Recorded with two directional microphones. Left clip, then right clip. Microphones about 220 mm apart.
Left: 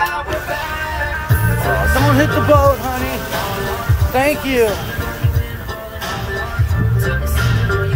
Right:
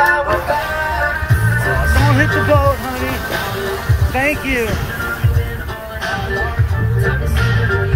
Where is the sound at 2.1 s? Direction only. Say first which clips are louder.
Left 1 dB; 30° left (ahead or behind).